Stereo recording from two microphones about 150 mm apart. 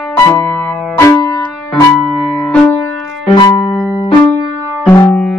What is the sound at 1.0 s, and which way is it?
Keyboard, 15° left (ahead or behind).